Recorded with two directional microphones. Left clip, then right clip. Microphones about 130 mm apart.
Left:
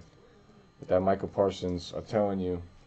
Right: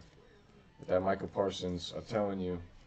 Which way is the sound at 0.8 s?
Centre (ahead or behind).